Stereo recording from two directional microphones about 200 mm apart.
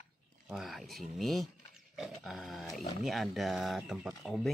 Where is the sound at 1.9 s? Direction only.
Centre (ahead or behind).